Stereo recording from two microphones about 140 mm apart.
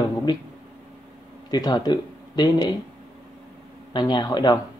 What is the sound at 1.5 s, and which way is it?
Speech, 30° left (ahead or behind).